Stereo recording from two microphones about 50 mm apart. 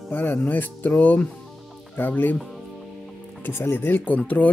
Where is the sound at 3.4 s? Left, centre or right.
Left.